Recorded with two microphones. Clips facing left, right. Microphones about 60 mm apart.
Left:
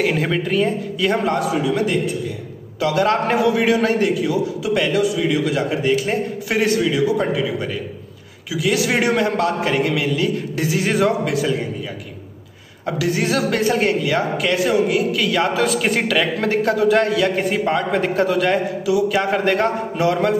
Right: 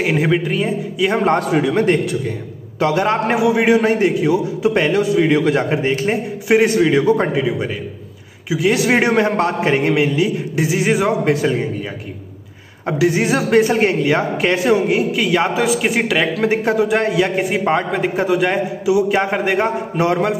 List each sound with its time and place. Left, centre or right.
0.0 s a man's voice: centre
1.2 s a man's voice: right
2.8 s a man's voice: right
6.9 s a man's voice: right
8.5 s a man's voice: right
11.2 s a man's voice: right
12.8 s a man's voice: right
15.6 s a man's voice: centre
17.9 s a man's voice: centre